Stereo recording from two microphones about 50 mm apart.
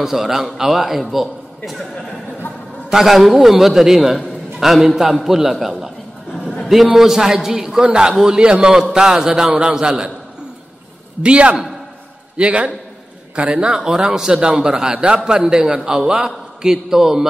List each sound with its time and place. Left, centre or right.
0.0 s a man's voice: centre
2.9 s a man's voice: centre
11.2 s a man's voice: right